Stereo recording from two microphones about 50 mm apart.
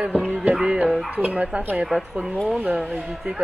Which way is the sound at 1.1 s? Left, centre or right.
Right.